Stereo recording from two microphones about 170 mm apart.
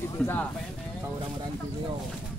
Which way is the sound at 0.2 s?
10° left (ahead or behind).